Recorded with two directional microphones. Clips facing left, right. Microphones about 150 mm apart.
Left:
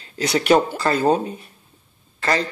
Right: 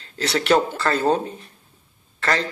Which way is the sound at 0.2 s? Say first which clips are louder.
Left 2 dB; 15° left (ahead or behind).